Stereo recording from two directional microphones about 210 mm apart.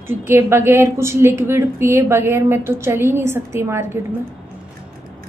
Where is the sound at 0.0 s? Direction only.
10° right (ahead or behind).